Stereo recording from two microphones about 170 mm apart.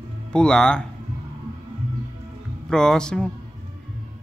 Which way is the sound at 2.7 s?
5° left (ahead or behind).